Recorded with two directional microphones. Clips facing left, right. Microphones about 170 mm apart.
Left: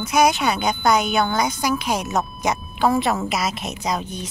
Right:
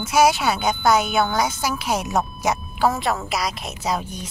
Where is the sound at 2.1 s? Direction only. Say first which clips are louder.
Even; 10° right (ahead or behind).